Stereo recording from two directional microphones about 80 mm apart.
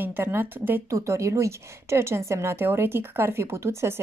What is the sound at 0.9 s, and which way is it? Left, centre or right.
A woman's voice, right.